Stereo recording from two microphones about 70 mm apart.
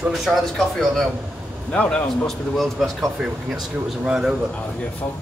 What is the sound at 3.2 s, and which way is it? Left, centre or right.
Speech, centre.